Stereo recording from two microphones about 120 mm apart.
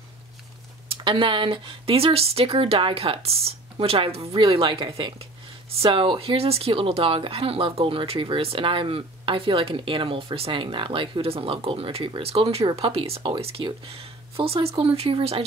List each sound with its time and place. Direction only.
0.8 s speech: 45° right (ahead or behind)